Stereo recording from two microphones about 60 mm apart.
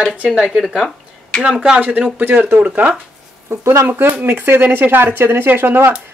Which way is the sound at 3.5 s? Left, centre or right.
Right.